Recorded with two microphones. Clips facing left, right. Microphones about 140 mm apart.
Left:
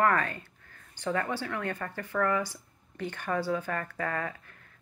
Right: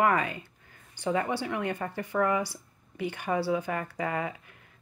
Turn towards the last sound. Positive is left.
turn(degrees=-15)  # may be behind; listen again after turning